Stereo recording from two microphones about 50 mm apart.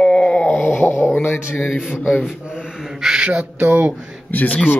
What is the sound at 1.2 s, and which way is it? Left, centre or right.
Speech, left.